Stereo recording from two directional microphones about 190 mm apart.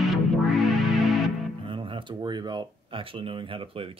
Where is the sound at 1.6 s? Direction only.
25° right (ahead or behind).